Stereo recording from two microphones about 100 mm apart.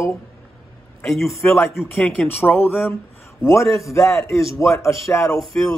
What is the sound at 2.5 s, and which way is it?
Speech, 5° left (ahead or behind).